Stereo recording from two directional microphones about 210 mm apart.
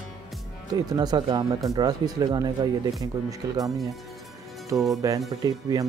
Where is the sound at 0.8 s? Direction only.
20° right (ahead or behind).